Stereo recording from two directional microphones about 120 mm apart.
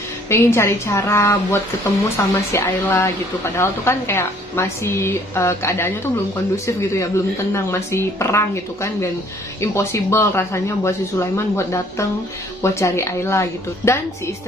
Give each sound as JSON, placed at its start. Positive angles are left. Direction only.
{"t": 0.3, "sound": "a woman's voice", "side_deg": 20}